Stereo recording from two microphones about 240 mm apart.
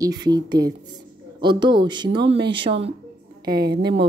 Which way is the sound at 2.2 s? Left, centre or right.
Right.